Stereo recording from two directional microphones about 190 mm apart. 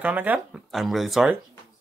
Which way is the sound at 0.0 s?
10° right (ahead or behind).